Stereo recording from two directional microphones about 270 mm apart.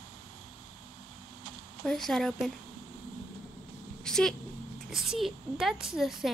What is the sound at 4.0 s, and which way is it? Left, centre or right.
A woman's voice, centre.